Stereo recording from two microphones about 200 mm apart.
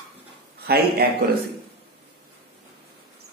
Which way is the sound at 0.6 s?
50° right (ahead or behind).